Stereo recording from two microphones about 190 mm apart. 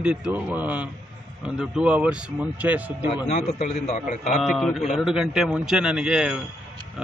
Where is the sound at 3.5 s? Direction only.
35° left (ahead or behind).